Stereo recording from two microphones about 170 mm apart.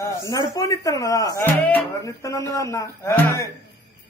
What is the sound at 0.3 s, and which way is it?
Speech, 20° left (ahead or behind).